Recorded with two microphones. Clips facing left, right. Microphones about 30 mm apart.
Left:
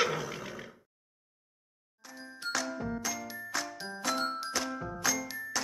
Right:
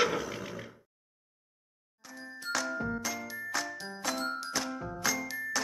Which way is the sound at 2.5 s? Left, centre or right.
Centre.